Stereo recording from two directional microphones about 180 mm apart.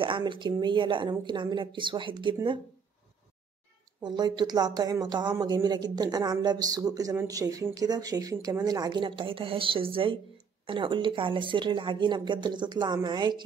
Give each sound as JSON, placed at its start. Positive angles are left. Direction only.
{"t": 0.0, "sound": "a woman's voice", "side_deg": -25}
{"t": 4.0, "sound": "a woman's voice", "side_deg": -25}